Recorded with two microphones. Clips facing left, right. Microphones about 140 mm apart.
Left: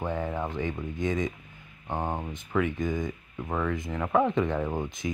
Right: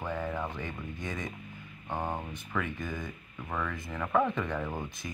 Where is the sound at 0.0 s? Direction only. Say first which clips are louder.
Left 4 dB; 20° left (ahead or behind).